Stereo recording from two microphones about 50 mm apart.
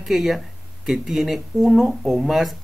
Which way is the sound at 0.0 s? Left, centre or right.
Centre.